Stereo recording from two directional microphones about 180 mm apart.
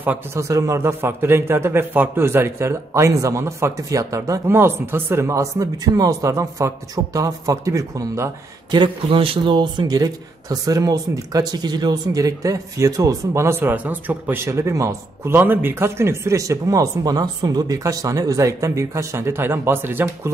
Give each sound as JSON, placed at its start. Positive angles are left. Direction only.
{"t": 0.0, "sound": "speech", "side_deg": -10}
{"t": 8.7, "sound": "speech", "side_deg": -30}